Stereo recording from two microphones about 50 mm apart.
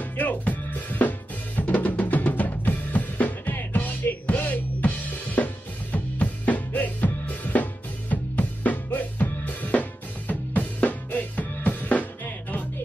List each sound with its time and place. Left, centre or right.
0.0 s music: left